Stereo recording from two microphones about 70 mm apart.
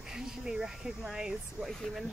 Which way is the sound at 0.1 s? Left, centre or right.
Centre.